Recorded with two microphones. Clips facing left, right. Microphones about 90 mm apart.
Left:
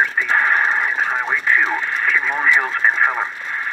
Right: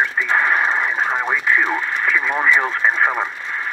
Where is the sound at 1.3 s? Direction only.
5° right (ahead or behind).